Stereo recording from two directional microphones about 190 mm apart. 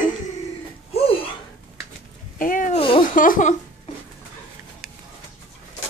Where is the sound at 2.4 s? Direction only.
45° left (ahead or behind).